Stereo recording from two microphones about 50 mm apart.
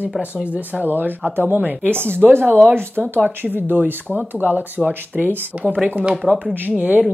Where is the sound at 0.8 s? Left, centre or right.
Right.